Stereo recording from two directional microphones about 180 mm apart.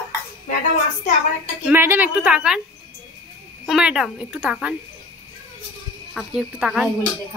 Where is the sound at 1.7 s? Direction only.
10° right (ahead or behind).